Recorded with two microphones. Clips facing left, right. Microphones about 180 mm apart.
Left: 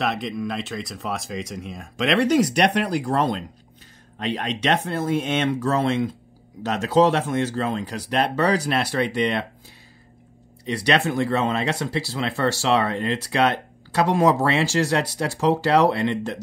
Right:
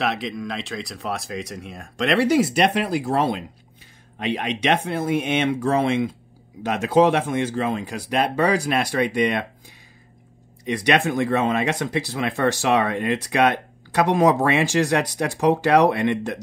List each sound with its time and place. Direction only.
0.0 s speech: centre (ahead or behind)
10.6 s speech: 15° right (ahead or behind)